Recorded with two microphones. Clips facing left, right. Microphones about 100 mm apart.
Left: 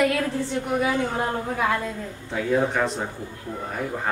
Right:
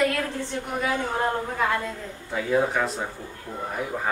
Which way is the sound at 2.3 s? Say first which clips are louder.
Left 1 dB; centre (ahead or behind).